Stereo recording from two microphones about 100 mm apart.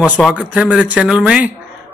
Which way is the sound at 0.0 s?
15° right (ahead or behind).